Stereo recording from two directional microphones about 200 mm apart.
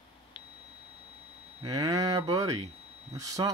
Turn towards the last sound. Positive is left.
turn(degrees=-15)  # may be behind; listen again after turning